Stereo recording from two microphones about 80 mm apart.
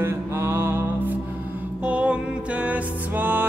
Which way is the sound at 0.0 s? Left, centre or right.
Right.